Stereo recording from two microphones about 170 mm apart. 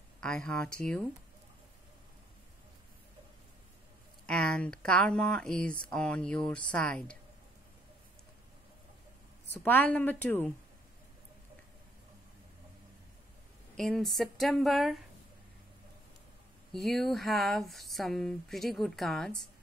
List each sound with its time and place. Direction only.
0.2 s speech: 5° left (ahead or behind)
4.3 s speech: 5° left (ahead or behind)
9.5 s a woman's voice: 10° left (ahead or behind)
13.7 s speech: centre (ahead or behind)
16.7 s speech: centre (ahead or behind)